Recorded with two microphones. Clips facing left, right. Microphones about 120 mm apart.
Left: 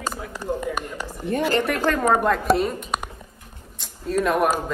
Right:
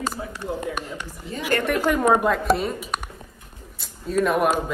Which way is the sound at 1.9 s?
5° right (ahead or behind).